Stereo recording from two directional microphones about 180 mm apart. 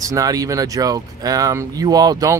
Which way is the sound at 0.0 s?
20° right (ahead or behind).